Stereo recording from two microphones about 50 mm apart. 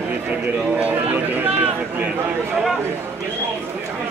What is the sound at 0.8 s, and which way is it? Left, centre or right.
Speech, right.